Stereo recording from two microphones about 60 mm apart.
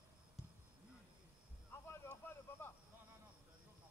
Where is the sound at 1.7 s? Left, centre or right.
Left.